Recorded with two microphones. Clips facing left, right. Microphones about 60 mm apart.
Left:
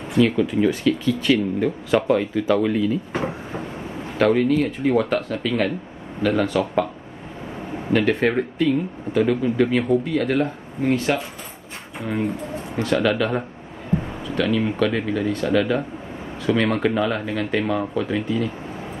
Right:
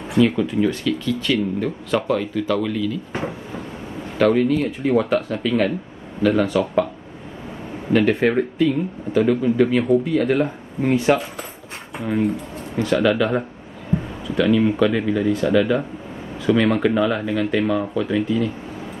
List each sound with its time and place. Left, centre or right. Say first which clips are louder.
0.2 s speech: even; centre
2.7 s speech: left 3 dB; left
4.2 s speech: right 1 dB; centre
7.9 s speech: right 2 dB; centre